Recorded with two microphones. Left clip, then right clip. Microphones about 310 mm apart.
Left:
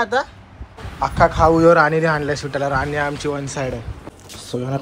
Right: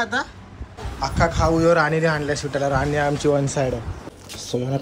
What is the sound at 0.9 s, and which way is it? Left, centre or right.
A man's voice, centre.